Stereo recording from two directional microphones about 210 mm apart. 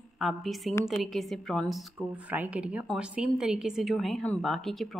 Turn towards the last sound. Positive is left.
turn(degrees=0)  # may be behind; listen again after turning